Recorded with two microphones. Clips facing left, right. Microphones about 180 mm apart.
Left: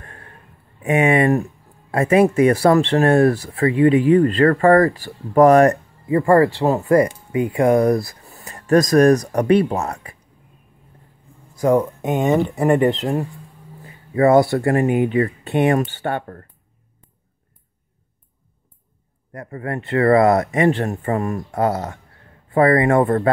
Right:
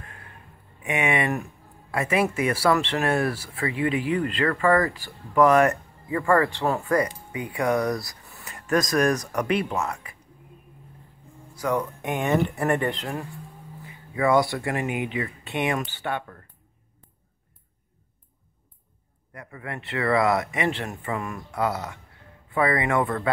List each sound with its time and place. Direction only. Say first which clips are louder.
0.8 s speech: left 9 dB; 35° left (ahead or behind)
6.0 s speech: left 7 dB; 30° left (ahead or behind)
8.0 s a sound: left 9 dB; 50° left (ahead or behind)
8.4 s speech: left 8 dB; 35° left (ahead or behind)
11.6 s speech: left 9 dB; 25° left (ahead or behind)
13.8 s speech: left 8 dB; 50° left (ahead or behind)
19.3 s speech: left 9 dB; 40° left (ahead or behind)